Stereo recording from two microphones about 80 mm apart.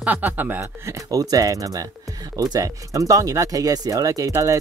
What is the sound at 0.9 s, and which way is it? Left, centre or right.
Speech, right.